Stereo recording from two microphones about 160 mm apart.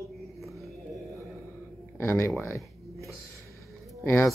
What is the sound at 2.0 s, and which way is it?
Speech, 15° left (ahead or behind).